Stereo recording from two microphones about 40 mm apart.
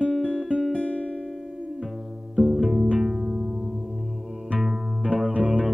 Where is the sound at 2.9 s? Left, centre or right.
Centre.